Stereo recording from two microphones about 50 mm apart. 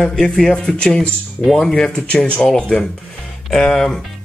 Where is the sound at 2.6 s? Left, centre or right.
Centre.